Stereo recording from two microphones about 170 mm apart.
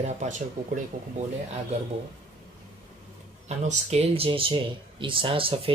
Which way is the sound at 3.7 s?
40° right (ahead or behind).